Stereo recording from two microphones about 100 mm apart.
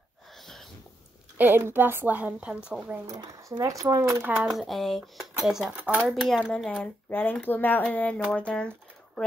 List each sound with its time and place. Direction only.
1.4 s a woman's voice: 20° right (ahead or behind)
3.2 s speech: 35° right (ahead or behind)
4.4 s speech: centre (ahead or behind)
5.8 s a woman's voice: 15° right (ahead or behind)
6.0 s speech: centre (ahead or behind)
6.8 s speech: 20° left (ahead or behind)